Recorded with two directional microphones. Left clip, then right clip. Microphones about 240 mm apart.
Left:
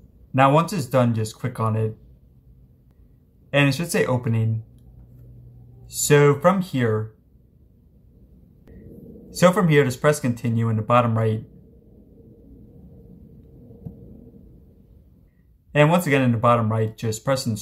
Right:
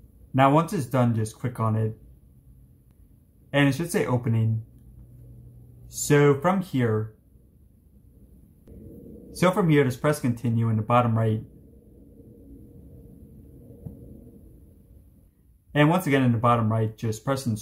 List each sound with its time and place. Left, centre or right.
0.3 s speech: left
3.4 s speech: left
5.9 s speech: left
8.7 s music: centre
9.3 s speech: left
15.7 s speech: left